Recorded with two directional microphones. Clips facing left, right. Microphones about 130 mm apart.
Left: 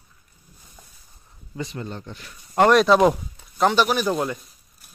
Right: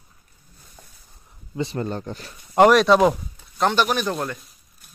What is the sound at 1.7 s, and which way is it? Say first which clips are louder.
Speech: right 6 dB; 45° right (ahead or behind).